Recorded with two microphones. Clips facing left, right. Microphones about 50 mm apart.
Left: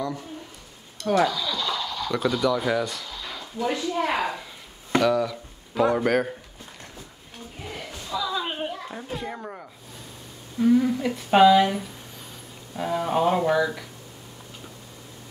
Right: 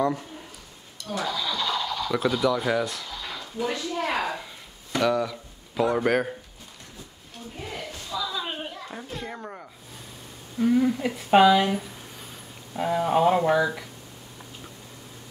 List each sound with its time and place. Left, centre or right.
1.0 s speech: left
1.3 s speech: centre
1.7 s speech: centre
3.7 s speech: centre
5.0 s speech: centre
7.9 s a sound: centre
8.9 s speech: centre